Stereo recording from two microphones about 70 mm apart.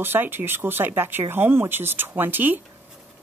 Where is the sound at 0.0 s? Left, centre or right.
Right.